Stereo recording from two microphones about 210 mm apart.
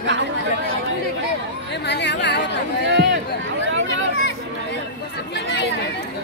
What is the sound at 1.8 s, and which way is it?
Speech, 55° left (ahead or behind).